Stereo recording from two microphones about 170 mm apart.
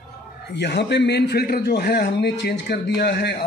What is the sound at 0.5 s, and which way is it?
A man's voice, 75° left (ahead or behind).